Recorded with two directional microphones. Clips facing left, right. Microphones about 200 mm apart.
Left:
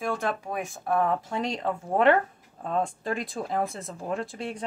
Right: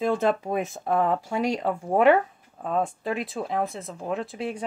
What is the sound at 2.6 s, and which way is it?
Speech, 5° right (ahead or behind).